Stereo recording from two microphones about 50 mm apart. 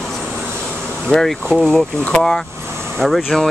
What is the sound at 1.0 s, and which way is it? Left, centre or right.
Speech, centre.